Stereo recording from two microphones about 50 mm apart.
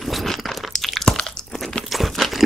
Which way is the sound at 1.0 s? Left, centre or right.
Centre.